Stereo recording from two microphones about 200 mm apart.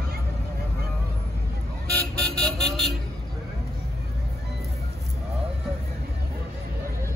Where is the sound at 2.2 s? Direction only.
5° left (ahead or behind).